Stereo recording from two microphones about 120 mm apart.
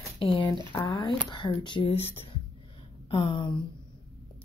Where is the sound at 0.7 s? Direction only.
30° left (ahead or behind).